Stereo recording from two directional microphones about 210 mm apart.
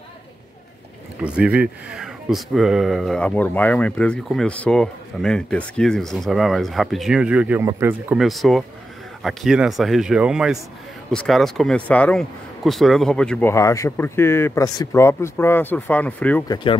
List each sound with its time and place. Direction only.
1.2 s speech: 5° right (ahead or behind)
16.4 s speech: 20° left (ahead or behind)